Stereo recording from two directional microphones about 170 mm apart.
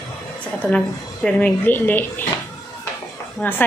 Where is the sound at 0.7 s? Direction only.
5° left (ahead or behind).